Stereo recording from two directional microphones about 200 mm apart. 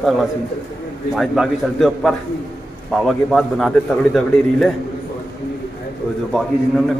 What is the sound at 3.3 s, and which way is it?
A man's voice, centre (ahead or behind).